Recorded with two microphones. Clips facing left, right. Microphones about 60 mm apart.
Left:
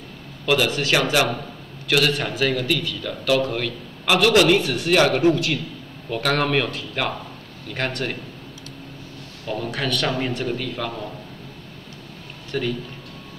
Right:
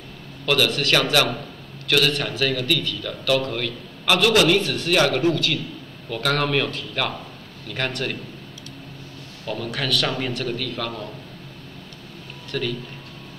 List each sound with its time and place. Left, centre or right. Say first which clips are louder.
0.5 s a man's voice: left 1 dB; centre; by 6.4 s left
6.4 s a man's voice: left 1 dB; centre
9.7 s a man's voice: even; centre
12.4 s speech: left 2 dB; centre